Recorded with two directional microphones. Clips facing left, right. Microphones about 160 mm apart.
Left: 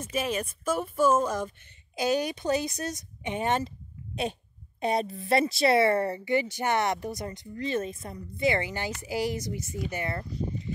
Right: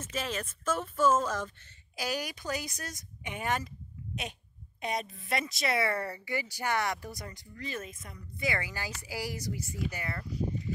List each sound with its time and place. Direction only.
0.0 s speech: 15° left (ahead or behind)
2.0 s speech: 25° left (ahead or behind)